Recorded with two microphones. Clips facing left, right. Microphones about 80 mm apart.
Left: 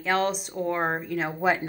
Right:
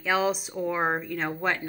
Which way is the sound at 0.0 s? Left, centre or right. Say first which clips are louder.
Even; centre.